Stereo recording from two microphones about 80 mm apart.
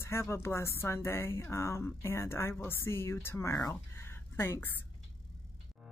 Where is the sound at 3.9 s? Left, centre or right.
Left.